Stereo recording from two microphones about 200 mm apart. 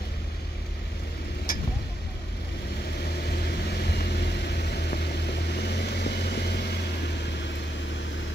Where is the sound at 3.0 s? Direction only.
55° left (ahead or behind).